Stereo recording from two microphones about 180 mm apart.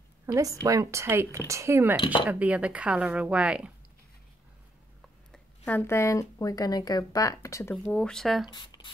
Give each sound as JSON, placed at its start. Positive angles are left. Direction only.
{"t": 0.3, "sound": "a woman's voice", "side_deg": -20}
{"t": 5.7, "sound": "speech", "side_deg": 10}
{"t": 7.7, "sound": "speech", "side_deg": 5}
{"t": 8.5, "sound": "speech", "side_deg": 25}